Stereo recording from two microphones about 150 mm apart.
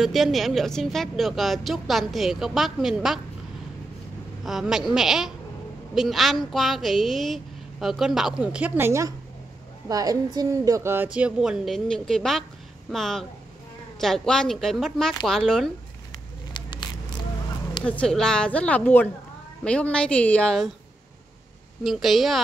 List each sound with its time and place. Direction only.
0.0 s a woman's voice: centre (ahead or behind)
4.5 s a woman's voice: 5° right (ahead or behind)
16.5 s a sound: 30° left (ahead or behind)
17.8 s a woman's voice: 5° left (ahead or behind)
21.8 s a woman's voice: centre (ahead or behind)